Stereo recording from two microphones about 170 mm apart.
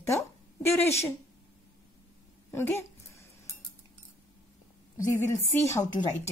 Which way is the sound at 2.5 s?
15° left (ahead or behind).